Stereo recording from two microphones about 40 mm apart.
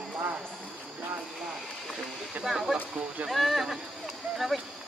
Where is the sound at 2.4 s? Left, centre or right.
Centre.